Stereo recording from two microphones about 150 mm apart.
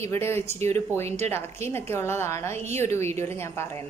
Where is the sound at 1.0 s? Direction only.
45° right (ahead or behind).